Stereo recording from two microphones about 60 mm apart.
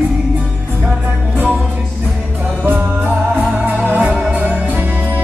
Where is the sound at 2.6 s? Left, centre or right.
Right.